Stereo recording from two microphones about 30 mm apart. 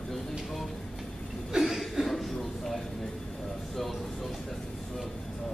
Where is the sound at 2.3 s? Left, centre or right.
Centre.